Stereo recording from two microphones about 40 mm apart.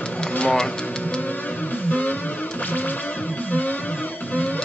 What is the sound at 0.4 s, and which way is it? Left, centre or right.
Speech, left.